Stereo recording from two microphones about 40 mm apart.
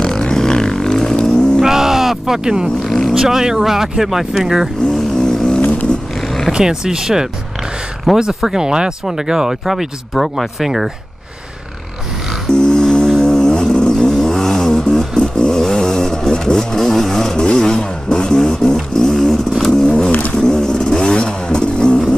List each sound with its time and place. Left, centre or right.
0.0 s vehicle: centre
1.6 s a sound: centre
2.4 s speech: right
2.8 s a sound: centre
3.2 s speech: centre
4.9 s vehicle: centre
6.2 s roaring cats: centre
6.5 s speech: centre
12.4 s music: centre
18.4 s vehicle: centre
20.1 s a sound: left
20.3 s vehicle: centre